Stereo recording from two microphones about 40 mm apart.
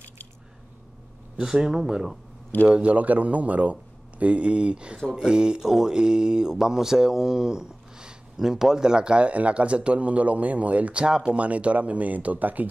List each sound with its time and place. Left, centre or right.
1.4 s speech: centre
2.7 s speech: right
11.0 s speech: centre
11.3 s speech: right